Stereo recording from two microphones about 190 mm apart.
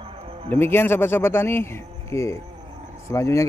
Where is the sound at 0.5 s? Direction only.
10° left (ahead or behind).